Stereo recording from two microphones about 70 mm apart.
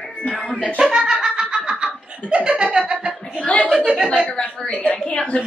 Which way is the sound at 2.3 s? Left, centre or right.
Centre.